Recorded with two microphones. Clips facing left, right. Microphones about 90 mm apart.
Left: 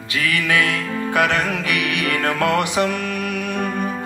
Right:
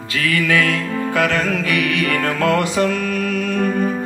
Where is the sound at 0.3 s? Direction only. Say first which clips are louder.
Right 3 dB; 20° left (ahead or behind).